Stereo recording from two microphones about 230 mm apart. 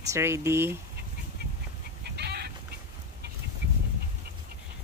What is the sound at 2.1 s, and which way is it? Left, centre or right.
Chicken, right.